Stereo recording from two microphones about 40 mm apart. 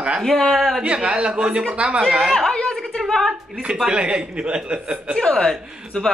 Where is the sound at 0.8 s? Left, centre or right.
Right.